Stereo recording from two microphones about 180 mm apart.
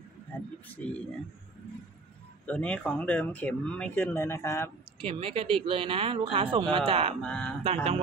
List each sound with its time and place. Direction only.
0.7 s speech: 5° left (ahead or behind)
2.4 s speech: 5° left (ahead or behind)
4.9 s speech: 30° right (ahead or behind)
7.2 s speech: 5° left (ahead or behind)
7.6 s speech: 35° right (ahead or behind)